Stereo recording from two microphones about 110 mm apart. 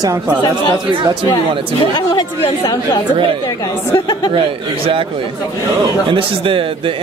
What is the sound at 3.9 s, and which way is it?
Speech, 55° left (ahead or behind).